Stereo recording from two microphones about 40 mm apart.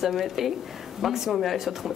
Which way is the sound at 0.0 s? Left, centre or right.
Centre.